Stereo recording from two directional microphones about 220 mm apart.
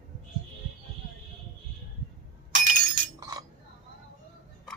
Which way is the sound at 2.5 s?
35° right (ahead or behind).